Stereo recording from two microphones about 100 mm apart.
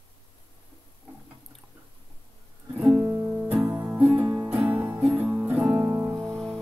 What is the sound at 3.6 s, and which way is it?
Music, 25° right (ahead or behind).